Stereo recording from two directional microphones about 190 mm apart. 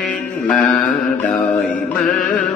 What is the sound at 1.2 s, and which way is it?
Music, 5° left (ahead or behind).